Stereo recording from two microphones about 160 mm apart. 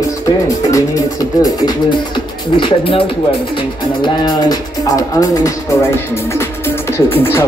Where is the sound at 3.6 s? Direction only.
30° left (ahead or behind).